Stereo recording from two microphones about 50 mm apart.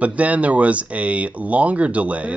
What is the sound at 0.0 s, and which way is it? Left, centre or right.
Speech, right.